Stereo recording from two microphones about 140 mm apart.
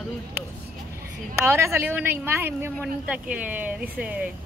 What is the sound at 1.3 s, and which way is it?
Speech, 15° right (ahead or behind).